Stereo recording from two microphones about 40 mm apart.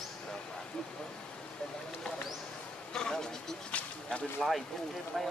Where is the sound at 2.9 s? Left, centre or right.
Centre.